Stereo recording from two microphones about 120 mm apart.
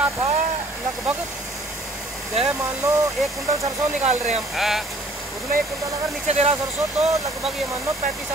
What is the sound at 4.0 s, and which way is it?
Speech, 65° right (ahead or behind).